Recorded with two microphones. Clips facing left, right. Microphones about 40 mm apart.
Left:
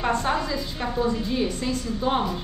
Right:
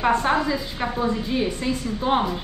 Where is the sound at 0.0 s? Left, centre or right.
Centre.